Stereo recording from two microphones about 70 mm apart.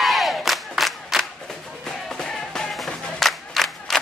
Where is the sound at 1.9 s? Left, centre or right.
Centre.